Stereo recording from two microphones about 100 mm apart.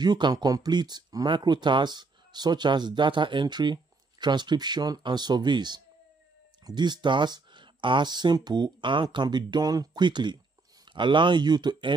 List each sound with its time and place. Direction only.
0.0 s speech: 45° right (ahead or behind)